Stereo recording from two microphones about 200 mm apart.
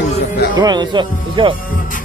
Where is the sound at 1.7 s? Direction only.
40° left (ahead or behind).